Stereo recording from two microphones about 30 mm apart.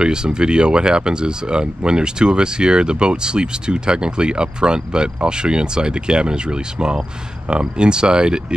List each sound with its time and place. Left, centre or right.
0.0 s speech: right